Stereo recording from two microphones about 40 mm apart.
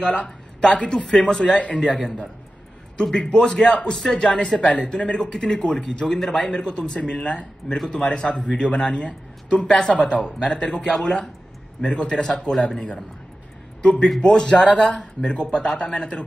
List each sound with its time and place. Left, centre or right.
0.0 s a man's voice: left
1.6 s a man's voice: left
1.9 s a man's voice: centre
7.7 s a man's voice: centre
8.0 s speech: centre
10.0 s speech: left
12.2 s a man's voice: centre
13.8 s speech: left
14.7 s speech: centre
15.2 s speech: left